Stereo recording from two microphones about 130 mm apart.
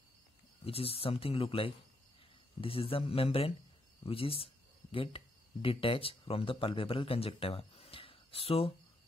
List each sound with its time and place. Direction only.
0.7 s speech: 50° left (ahead or behind)